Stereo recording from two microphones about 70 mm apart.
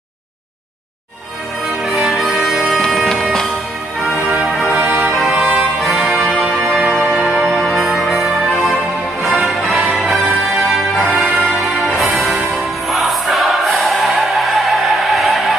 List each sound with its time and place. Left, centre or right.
1.9 s music: centre
4.5 s music: centre
4.7 s music: right
5.8 s brass instrument: centre
6.6 s music: centre